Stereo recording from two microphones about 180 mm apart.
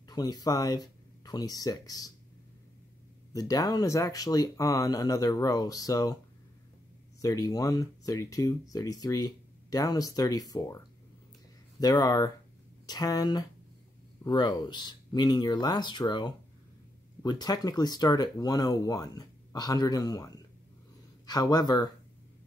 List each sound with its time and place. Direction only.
0.1 s speech: 20° left (ahead or behind)
3.3 s speech: 20° left (ahead or behind)
7.2 s speech: 20° left (ahead or behind)
11.8 s speech: 20° left (ahead or behind)